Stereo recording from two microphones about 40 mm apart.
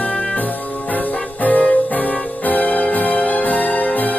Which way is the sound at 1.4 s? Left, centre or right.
Left.